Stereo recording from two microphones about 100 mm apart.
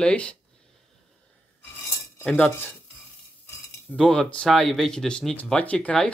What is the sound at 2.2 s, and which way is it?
Speech, 15° left (ahead or behind).